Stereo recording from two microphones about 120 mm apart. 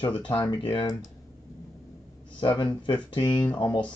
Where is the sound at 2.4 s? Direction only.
40° left (ahead or behind).